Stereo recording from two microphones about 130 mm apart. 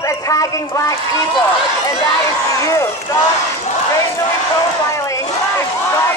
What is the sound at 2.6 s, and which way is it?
Speech, 20° left (ahead or behind).